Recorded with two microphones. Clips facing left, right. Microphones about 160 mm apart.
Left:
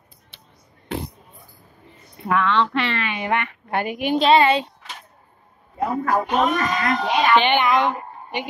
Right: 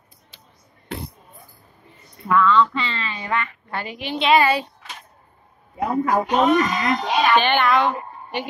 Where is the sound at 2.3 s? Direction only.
70° left (ahead or behind); by 4.3 s 50° left (ahead or behind).